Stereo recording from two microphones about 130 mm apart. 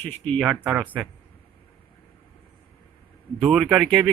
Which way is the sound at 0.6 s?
15° right (ahead or behind).